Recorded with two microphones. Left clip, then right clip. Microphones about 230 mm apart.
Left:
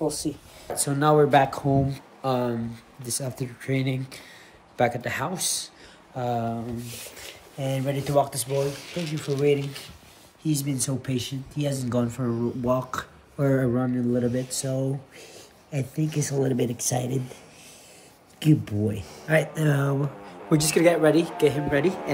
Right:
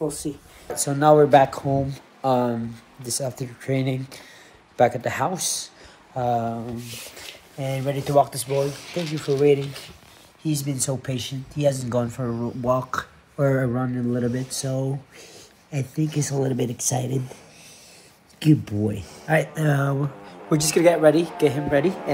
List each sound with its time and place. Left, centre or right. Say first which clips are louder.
0.2 s speech: even; centre
8.9 s speech: right 5 dB; centre
11.1 s speech: even; right
11.6 s speech: right 5 dB; centre
18.4 s speech: right 3 dB; centre